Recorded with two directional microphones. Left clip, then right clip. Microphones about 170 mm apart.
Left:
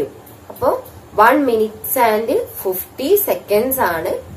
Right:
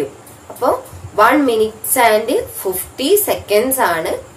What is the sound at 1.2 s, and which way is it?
A woman's voice, 10° right (ahead or behind).